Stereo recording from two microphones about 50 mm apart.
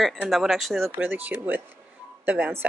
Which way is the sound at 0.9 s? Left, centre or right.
Right.